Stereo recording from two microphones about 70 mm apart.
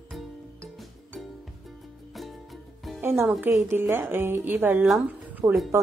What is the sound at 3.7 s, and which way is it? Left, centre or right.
Speech, right.